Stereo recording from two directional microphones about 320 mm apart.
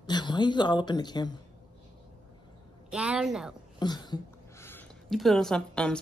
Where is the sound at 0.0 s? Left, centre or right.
Centre.